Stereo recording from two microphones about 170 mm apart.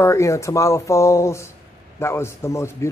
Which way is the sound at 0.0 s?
15° left (ahead or behind).